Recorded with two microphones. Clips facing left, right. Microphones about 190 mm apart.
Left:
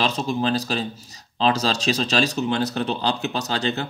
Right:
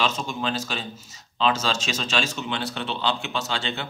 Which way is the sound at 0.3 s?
35° left (ahead or behind).